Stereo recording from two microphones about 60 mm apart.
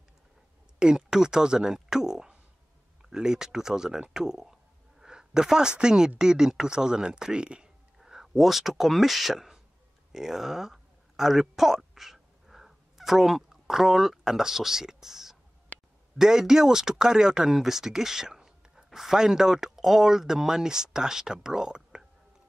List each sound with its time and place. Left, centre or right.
0.7 s speech: centre
15.7 s a sound: left
16.2 s speech: centre